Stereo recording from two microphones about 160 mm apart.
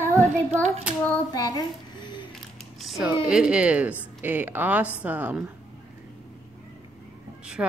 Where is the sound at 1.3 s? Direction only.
25° left (ahead or behind).